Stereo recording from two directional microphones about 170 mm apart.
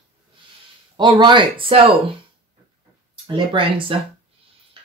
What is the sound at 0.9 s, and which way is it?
Speech, 25° right (ahead or behind).